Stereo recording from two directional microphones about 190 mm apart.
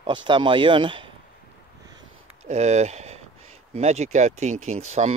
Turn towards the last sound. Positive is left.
turn(degrees=-35)  # may be behind; listen again after turning